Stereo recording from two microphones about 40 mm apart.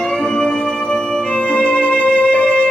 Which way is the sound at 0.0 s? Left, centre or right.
Left.